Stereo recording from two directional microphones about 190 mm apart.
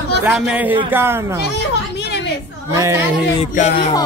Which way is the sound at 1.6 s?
65° left (ahead or behind).